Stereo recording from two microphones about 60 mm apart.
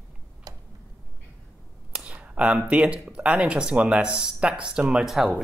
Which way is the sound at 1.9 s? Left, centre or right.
Centre.